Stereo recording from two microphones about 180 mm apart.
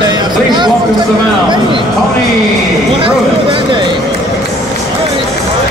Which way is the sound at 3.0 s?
30° right (ahead or behind).